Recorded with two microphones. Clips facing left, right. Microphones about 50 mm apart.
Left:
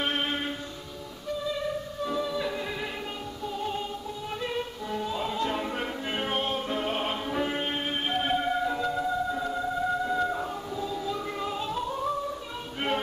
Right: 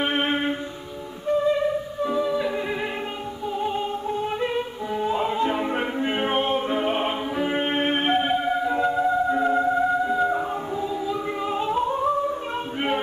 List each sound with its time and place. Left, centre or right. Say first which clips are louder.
0.0 s music: right 6 dB; right
1.7 s music: right 6 dB; centre
7.8 s music: right 8 dB; right
8.2 s music: right 4 dB; centre
8.7 s music: right 7 dB; right